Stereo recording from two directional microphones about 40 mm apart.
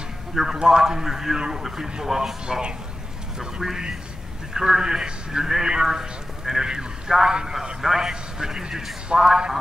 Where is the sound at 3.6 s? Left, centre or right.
Centre.